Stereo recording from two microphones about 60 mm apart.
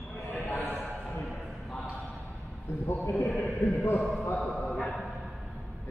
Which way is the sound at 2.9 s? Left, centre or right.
Left.